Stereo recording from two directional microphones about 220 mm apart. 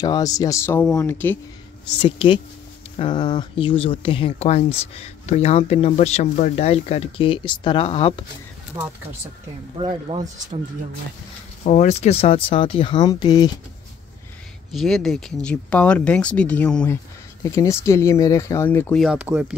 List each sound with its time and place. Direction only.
0.0 s speech: 15° left (ahead or behind)
2.0 s speech: 25° left (ahead or behind)
8.8 s speech: 15° right (ahead or behind)
9.8 s speech: 25° right (ahead or behind)
11.6 s speech: 35° left (ahead or behind); by 13.5 s 15° left (ahead or behind)
14.7 s speech: centre (ahead or behind)